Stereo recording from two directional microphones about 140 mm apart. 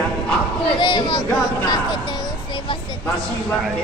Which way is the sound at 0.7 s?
35° left (ahead or behind).